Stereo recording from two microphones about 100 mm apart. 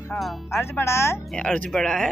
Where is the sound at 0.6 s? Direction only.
25° left (ahead or behind).